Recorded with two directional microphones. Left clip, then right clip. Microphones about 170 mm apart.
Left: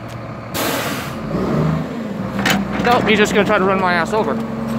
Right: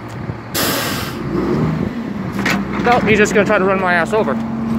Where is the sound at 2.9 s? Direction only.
10° left (ahead or behind).